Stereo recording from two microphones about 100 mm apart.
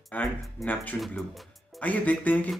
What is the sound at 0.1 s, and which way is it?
A man's voice, 15° left (ahead or behind).